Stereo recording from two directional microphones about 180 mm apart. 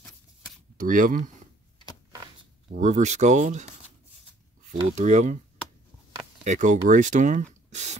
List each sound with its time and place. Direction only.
0.7 s speech: 50° right (ahead or behind)
2.7 s speech: 40° right (ahead or behind)
4.9 s speech: 40° right (ahead or behind)
6.4 s speech: 45° right (ahead or behind)
7.7 s a sound: 40° right (ahead or behind)